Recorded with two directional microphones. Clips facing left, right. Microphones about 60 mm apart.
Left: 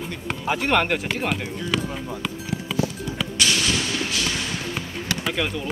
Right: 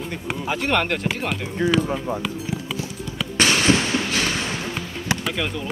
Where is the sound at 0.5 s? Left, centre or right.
Centre.